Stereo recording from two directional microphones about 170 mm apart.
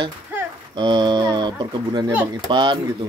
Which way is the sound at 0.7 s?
25° right (ahead or behind).